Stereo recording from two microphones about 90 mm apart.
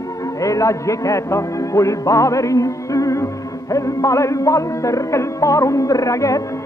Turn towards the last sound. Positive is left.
turn(degrees=35)  # may be behind; listen again after turning